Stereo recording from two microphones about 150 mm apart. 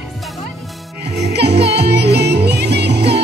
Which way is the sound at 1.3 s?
90° right.